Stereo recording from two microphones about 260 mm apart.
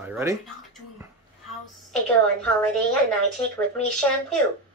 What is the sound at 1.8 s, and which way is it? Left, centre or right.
Speech, centre.